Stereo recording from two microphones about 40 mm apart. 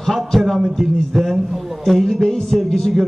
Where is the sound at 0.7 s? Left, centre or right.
Centre.